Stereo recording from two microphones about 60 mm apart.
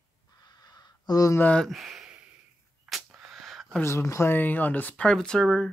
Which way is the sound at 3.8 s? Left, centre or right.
Left.